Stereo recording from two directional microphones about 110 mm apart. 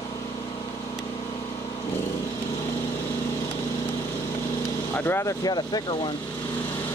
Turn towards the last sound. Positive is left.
turn(degrees=40)  # may be behind; listen again after turning